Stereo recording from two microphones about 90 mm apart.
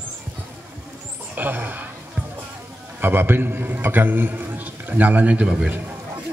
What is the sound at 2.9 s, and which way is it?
A man's voice, 25° right (ahead or behind).